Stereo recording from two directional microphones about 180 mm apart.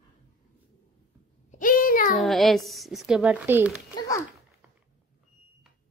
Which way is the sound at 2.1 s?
Centre (ahead or behind).